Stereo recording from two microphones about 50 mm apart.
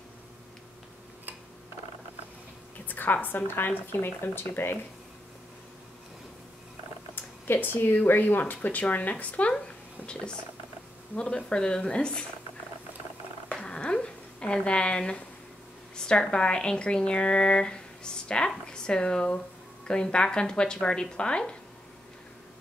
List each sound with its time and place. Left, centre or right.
2.9 s a woman's voice: left
7.4 s speech: left
11.1 s speech: left
13.5 s a sound: centre
16.0 s speech: centre